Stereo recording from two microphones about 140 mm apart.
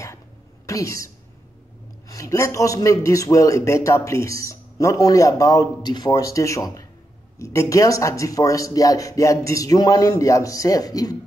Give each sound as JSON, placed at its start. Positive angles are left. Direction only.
{"t": 0.7, "sound": "a woman's voice", "side_deg": 25}